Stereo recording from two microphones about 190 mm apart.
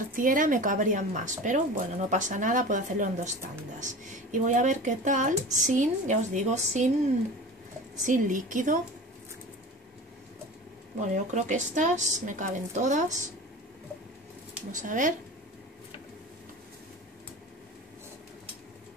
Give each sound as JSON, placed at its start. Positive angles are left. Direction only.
{"t": 0.1, "sound": "speech", "side_deg": -45}
{"t": 7.9, "sound": "speech", "side_deg": -40}
{"t": 11.0, "sound": "speech", "side_deg": -40}
{"t": 14.7, "sound": "speech", "side_deg": -40}